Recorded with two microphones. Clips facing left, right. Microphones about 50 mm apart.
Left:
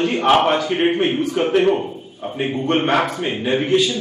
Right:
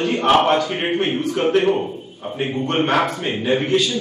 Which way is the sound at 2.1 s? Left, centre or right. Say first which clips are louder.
Left 2 dB; centre.